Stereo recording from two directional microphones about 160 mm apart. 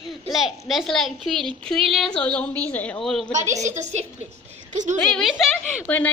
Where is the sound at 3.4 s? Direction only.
45° right (ahead or behind).